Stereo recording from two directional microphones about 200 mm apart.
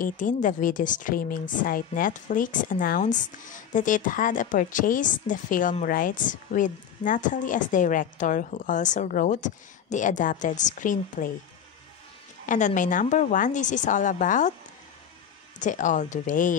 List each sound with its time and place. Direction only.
0.0 s a woman's voice: 40° left (ahead or behind)
12.4 s a woman's voice: 40° left (ahead or behind)
15.6 s a woman's voice: 40° left (ahead or behind)